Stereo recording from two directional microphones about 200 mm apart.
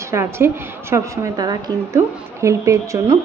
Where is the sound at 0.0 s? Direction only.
15° right (ahead or behind).